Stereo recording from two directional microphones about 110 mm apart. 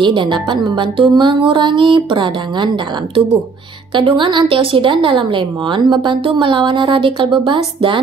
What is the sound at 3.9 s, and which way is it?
A woman's voice, 45° right (ahead or behind).